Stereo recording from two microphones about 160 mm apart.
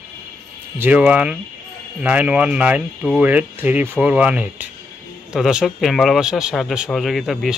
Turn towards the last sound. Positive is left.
turn(degrees=0)  # may be behind; listen again after turning